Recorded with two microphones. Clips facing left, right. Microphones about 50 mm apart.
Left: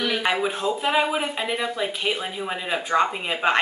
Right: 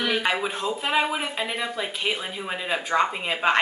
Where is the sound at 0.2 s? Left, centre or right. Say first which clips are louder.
Left 2 dB; centre.